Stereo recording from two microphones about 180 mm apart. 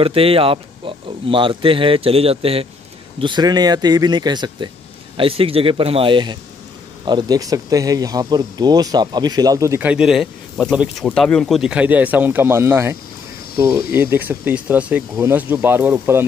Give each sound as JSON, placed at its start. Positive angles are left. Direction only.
{"t": 0.0, "sound": "speech", "side_deg": -30}
{"t": 13.9, "sound": "speech", "side_deg": -10}